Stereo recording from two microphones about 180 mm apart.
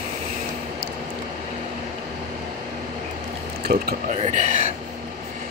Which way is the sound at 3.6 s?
60° right (ahead or behind).